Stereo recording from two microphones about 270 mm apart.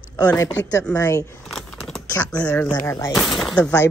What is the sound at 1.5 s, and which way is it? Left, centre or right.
A woman's voice, centre.